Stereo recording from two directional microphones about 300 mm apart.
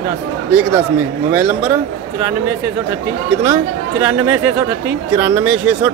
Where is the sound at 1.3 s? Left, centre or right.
Centre.